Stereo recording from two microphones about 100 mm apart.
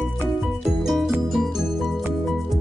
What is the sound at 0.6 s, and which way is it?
Music, centre (ahead or behind).